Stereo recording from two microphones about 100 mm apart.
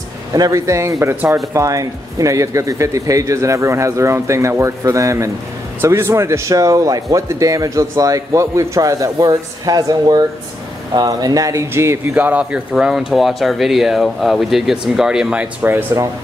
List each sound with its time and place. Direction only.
0.3 s a man's voice: 35° right (ahead or behind); by 15.4 s 10° right (ahead or behind)
15.6 s speech: 20° right (ahead or behind)